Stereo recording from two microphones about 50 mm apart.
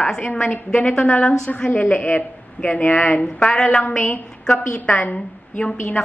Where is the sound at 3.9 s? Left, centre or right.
Left.